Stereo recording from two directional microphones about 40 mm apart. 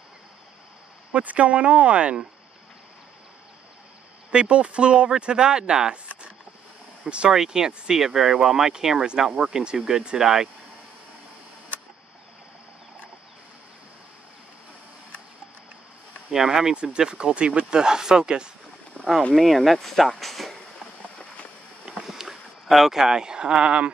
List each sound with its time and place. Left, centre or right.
1.1 s speech: right
4.3 s speech: right
7.1 s speech: right
7.3 s speech: centre
16.3 s speech: centre
19.3 s speech: centre
20.2 s a sound: centre
22.0 s boat: centre
23.0 s speech: centre